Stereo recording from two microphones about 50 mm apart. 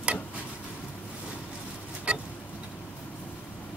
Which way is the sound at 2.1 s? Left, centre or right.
Right.